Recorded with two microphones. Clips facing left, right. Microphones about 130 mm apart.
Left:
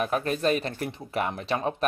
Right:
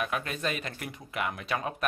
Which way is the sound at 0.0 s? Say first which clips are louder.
Left 6 dB; 40° left (ahead or behind).